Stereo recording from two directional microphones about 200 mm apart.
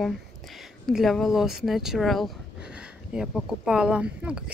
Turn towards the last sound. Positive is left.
turn(degrees=-5)  # may be behind; listen again after turning